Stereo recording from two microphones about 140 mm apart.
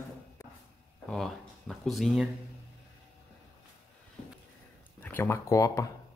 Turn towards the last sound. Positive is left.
turn(degrees=25)  # may be behind; listen again after turning